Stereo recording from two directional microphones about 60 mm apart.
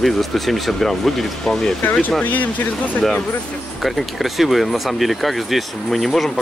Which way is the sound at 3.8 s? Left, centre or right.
Centre.